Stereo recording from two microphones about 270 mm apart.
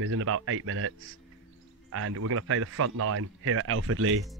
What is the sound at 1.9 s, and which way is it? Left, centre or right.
Speech, right.